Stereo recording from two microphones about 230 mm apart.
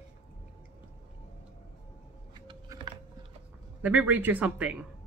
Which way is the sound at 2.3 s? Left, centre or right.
Centre.